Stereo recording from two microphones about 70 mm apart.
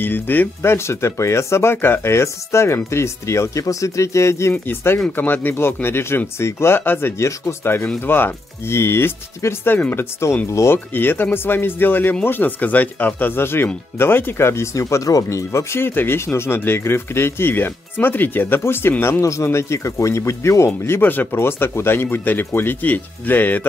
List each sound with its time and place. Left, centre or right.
0.0 s speech: left
0.6 s speech: left
10.2 s speech: left
10.9 s speech: left
19.2 s speech: left
21.0 s speech: left